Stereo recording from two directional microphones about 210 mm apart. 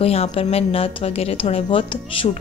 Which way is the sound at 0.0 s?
30° left (ahead or behind).